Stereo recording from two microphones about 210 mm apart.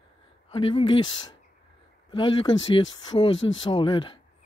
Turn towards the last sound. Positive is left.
turn(degrees=25)  # may be behind; listen again after turning